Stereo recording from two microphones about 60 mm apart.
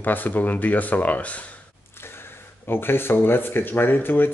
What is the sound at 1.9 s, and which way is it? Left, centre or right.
Speech, left.